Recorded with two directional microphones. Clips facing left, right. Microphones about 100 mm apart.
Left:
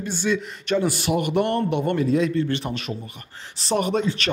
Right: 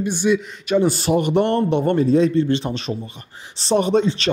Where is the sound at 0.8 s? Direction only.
30° right (ahead or behind).